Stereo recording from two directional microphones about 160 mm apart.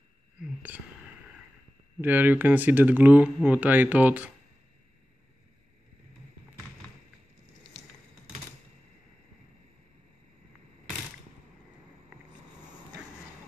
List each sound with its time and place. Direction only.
0.6 s speech: 10° right (ahead or behind)
2.0 s speech: 10° right (ahead or behind)